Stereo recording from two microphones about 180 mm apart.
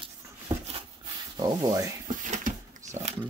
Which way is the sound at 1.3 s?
20° right (ahead or behind).